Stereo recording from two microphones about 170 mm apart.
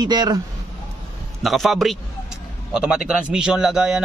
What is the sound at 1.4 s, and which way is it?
Speech, centre (ahead or behind).